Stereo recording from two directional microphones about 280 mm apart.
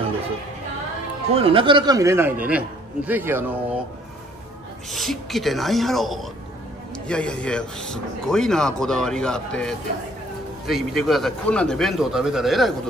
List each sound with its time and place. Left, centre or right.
1.3 s speech: centre
4.9 s a man's voice: centre